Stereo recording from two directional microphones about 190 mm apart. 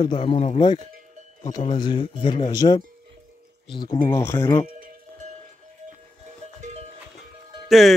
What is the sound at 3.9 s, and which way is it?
Speech, 15° left (ahead or behind).